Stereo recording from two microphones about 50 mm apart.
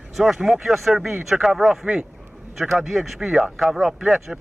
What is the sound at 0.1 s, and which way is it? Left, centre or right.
Speech, centre.